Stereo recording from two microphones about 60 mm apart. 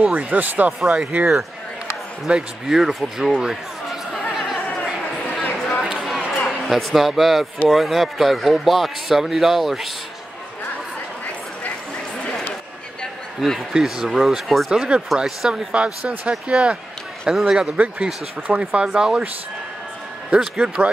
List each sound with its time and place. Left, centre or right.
0.0 s speech: right
2.2 s speech: centre
4.4 s chatter: centre
5.9 s a sound: centre
6.7 s a man's voice: centre
13.4 s a man's voice: centre
14.7 s speech: centre
15.7 s speech: centre
18.5 s speech: right
20.2 s speech: centre